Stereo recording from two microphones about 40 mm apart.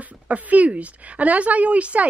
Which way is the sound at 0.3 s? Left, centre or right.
Right.